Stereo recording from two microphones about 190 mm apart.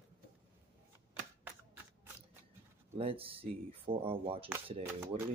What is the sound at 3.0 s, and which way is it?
Speech, 30° right (ahead or behind).